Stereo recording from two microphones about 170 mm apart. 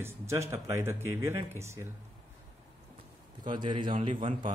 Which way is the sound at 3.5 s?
25° right (ahead or behind).